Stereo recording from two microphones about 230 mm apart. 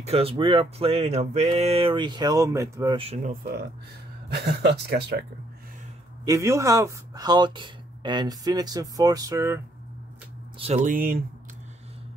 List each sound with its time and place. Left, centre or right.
0.0 s speech: right
3.0 s speech: right
4.3 s speech: right
6.2 s speech: centre
10.9 s speech: right